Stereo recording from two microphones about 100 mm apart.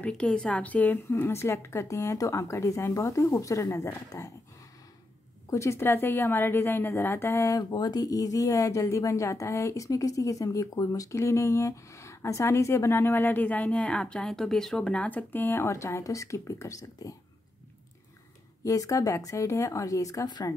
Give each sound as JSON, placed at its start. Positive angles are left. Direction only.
{"t": 0.0, "sound": "speech", "side_deg": 10}
{"t": 5.5, "sound": "speech", "side_deg": 30}
{"t": 7.7, "sound": "speech", "side_deg": 40}
{"t": 18.6, "sound": "speech", "side_deg": 35}